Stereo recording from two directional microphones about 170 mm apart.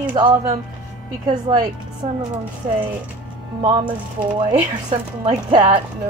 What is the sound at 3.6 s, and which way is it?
Speech, 30° right (ahead or behind).